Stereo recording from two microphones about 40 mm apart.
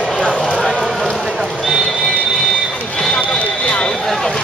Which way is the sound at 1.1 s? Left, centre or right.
Centre.